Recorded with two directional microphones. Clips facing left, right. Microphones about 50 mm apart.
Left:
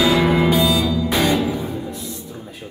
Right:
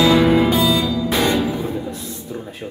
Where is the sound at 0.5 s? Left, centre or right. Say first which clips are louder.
Even; centre.